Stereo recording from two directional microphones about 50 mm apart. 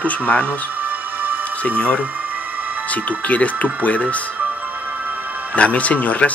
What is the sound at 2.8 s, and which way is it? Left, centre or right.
Speech, left.